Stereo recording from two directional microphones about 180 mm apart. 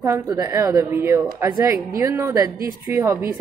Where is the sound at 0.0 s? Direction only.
15° right (ahead or behind).